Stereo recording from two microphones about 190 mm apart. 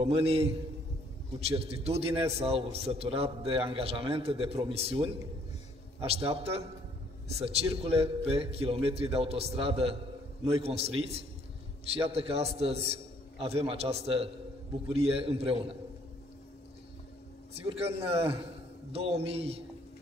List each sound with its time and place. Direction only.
0.0 s a man's voice: 30° right (ahead or behind)
17.6 s a man's voice: 30° right (ahead or behind)